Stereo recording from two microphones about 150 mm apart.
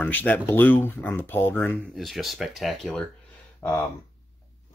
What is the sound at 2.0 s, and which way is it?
Speech, centre (ahead or behind).